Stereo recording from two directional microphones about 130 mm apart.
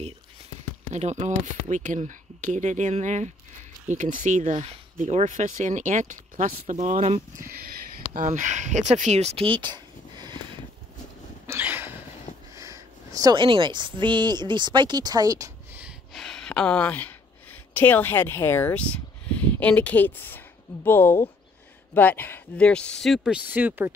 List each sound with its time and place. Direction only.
0.9 s speech: 60° right (ahead or behind)
3.9 s speech: 85° right; by 7.5 s 65° right (ahead or behind)
8.1 s speech: 80° right; by 10.4 s 35° right (ahead or behind)
11.4 s a sound: 15° right (ahead or behind)
12.5 s speech: 25° right (ahead or behind)
16.1 s speech: 5° left (ahead or behind)
23.4 s speech: 15° right (ahead or behind)